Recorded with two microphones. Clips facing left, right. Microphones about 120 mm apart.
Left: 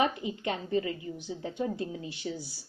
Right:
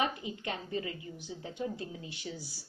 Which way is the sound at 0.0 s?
25° left (ahead or behind).